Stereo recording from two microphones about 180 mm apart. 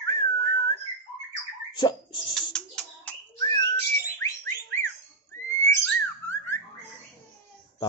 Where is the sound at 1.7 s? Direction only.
25° left (ahead or behind).